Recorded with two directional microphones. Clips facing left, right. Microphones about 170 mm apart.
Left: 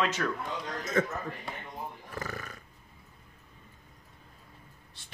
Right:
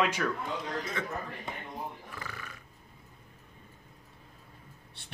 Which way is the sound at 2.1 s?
45° left (ahead or behind).